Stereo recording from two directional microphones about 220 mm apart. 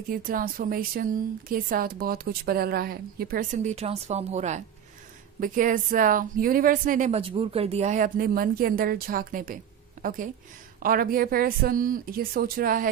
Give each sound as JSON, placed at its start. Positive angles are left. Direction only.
{"t": 0.1, "sound": "speech", "side_deg": -40}